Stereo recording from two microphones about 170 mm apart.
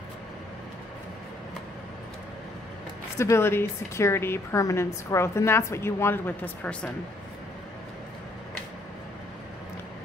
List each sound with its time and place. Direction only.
3.2 s a woman's voice: 15° left (ahead or behind)